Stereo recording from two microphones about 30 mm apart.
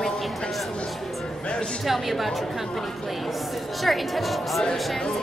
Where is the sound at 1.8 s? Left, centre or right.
Centre.